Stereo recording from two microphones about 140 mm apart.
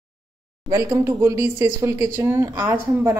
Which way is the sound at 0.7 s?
20° right (ahead or behind).